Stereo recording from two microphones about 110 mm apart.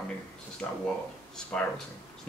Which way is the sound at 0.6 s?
15° left (ahead or behind).